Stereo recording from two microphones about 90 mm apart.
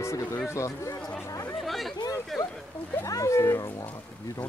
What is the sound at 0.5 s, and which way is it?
Speech, 35° left (ahead or behind).